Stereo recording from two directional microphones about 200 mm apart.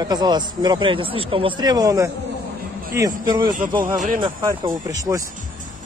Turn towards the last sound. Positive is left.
turn(degrees=-15)  # may be behind; listen again after turning